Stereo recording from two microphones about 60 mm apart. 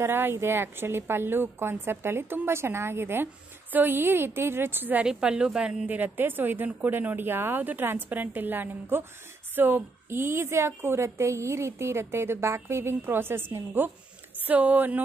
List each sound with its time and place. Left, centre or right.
0.0 s a woman's voice: right
5.0 s a woman's voice: centre
5.9 s a woman's voice: right